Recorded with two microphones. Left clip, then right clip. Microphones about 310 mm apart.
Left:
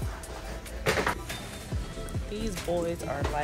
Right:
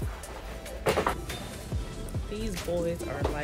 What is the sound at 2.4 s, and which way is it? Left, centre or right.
Speech, centre.